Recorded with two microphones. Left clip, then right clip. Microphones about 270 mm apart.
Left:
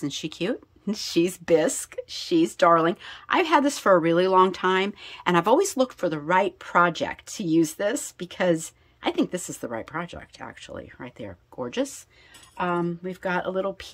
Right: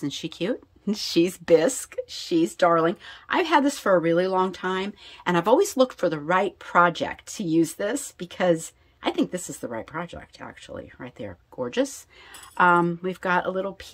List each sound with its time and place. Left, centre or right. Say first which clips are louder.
0.0 s speech: even; centre
12.5 s speech: right 8 dB; centre